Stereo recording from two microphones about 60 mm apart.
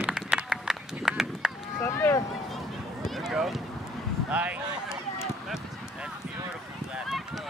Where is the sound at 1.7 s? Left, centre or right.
Left.